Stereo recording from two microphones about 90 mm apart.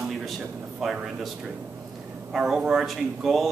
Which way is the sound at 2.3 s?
5° right (ahead or behind).